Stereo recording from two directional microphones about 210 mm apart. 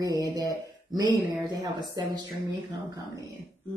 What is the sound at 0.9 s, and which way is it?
A woman's voice, 20° right (ahead or behind).